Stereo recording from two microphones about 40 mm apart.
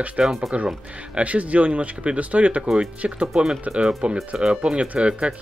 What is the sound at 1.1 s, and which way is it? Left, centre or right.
Speech, right.